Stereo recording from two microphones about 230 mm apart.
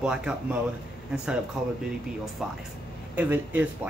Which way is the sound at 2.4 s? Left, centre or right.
Centre.